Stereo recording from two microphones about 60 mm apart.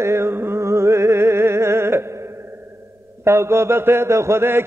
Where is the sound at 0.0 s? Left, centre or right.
Right.